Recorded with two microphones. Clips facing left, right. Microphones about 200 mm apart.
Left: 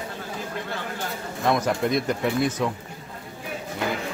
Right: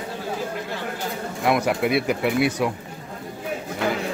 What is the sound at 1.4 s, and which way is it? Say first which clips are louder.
Speech: right 2 dB; 10° right (ahead or behind).